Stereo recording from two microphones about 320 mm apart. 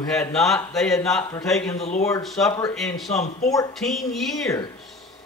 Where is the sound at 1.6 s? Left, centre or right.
Centre.